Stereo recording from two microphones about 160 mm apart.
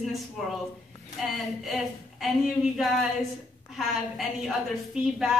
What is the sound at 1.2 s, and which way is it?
A woman's voice, centre (ahead or behind).